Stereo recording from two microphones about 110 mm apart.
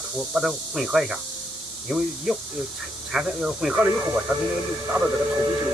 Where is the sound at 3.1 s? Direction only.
5° right (ahead or behind).